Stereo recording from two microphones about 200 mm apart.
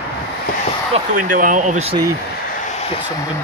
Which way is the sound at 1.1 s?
40° right (ahead or behind).